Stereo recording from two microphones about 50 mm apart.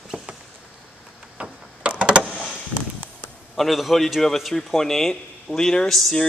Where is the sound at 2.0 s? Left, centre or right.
Right.